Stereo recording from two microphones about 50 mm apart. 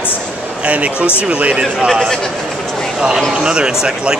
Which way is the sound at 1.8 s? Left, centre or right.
Centre.